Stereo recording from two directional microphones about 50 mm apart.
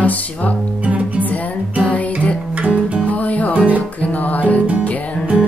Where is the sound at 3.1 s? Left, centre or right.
Left.